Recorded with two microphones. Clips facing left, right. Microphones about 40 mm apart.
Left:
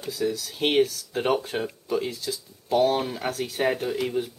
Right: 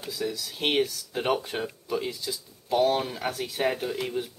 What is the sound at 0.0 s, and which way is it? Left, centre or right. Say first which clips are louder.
Speech: left 4 dB; centre.